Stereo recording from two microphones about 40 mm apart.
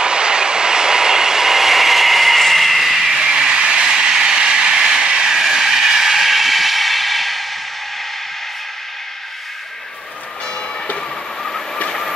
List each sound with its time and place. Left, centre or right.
0.0 s vehicle: right
3.2 s vehicle: centre
11.4 s vehicle: centre